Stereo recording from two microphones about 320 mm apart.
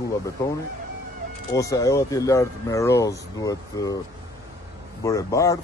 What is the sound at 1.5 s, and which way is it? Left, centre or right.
Speech, centre.